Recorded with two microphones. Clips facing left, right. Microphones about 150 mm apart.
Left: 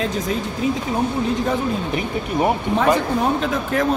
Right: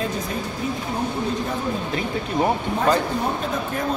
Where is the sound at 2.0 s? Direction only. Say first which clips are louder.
Even; 15° left (ahead or behind).